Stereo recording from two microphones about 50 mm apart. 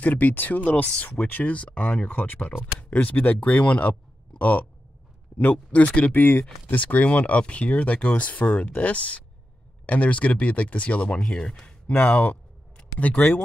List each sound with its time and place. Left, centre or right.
0.0 s speech: left
2.0 s speech: left
4.4 s a sound: left
5.4 s speech: left
11.2 s speech: centre
11.9 s speech: left